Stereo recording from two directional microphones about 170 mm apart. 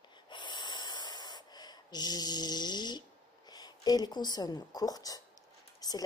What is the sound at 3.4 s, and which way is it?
A woman's voice, 25° left (ahead or behind).